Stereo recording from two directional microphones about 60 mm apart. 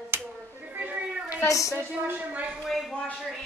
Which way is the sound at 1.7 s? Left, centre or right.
Right.